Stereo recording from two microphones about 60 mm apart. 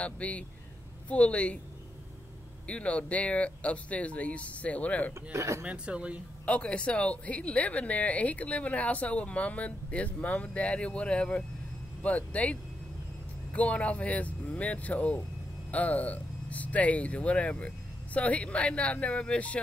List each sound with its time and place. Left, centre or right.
0.0 s speech: left
2.6 s speech: centre
5.3 s speech: right
5.7 s speech: centre
6.4 s speech: left